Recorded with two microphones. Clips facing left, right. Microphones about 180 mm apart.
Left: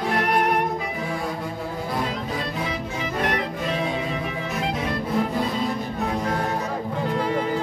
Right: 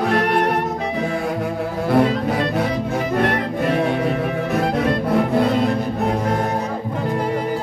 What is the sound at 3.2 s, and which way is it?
Music, 60° right (ahead or behind).